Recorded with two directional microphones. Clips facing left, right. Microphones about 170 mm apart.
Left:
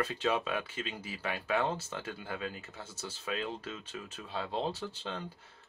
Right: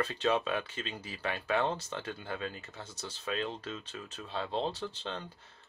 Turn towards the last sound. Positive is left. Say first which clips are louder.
# right 1 dB
turn(degrees=10)  # may be behind; listen again after turning